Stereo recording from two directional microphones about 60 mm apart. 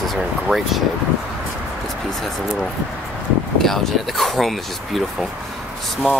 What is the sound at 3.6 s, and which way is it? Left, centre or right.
Speech, centre.